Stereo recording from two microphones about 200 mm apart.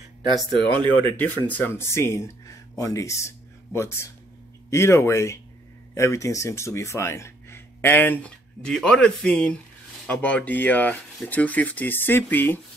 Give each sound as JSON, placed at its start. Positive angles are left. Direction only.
{"t": 0.5, "sound": "speech", "side_deg": -25}
{"t": 1.0, "sound": "speech", "side_deg": 10}